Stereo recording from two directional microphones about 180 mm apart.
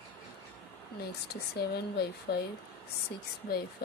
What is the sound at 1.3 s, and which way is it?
Speech, 60° left (ahead or behind).